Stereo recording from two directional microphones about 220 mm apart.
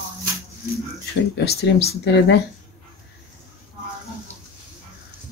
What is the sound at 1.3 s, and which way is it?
Speech, 50° left (ahead or behind).